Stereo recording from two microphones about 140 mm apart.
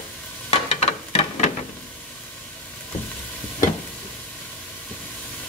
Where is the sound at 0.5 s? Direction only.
45° left (ahead or behind).